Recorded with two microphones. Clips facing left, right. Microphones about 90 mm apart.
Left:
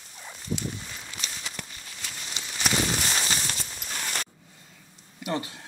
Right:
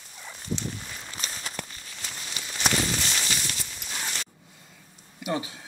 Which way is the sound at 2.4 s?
25° left (ahead or behind).